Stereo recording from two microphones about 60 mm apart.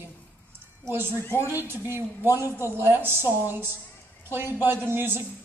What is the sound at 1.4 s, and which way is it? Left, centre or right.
A woman's voice, right.